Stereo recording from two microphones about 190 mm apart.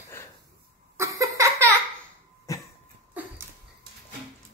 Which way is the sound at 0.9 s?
15° right (ahead or behind).